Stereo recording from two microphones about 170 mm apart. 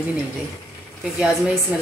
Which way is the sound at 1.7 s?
10° right (ahead or behind).